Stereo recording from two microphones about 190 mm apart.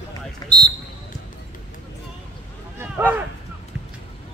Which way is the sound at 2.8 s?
10° right (ahead or behind).